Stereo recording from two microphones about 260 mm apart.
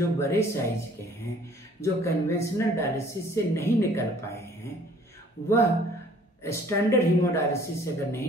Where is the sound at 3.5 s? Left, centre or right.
Centre.